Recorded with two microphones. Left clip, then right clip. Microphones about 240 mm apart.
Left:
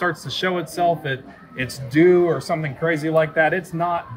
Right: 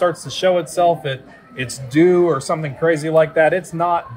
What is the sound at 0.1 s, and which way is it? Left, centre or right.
Speech, centre.